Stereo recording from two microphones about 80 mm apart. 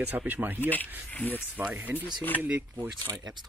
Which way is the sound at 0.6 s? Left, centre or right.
Left.